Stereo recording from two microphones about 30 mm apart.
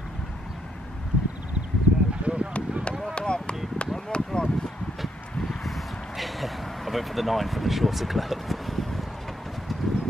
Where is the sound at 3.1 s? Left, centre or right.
Left.